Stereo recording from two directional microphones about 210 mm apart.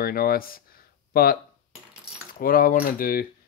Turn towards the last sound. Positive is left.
turn(degrees=45)  # may be behind; listen again after turning